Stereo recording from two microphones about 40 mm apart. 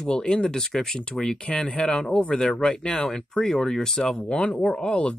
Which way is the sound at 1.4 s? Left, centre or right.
Left.